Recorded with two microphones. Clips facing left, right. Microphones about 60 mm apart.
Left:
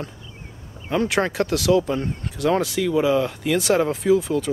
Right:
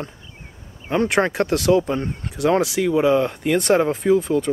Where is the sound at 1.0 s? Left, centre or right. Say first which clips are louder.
Right 3 dB; right.